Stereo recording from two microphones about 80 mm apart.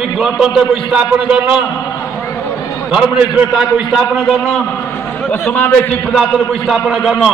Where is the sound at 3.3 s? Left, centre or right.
Centre.